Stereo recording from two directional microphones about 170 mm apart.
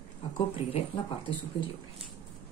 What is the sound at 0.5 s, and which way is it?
Speech, 30° left (ahead or behind).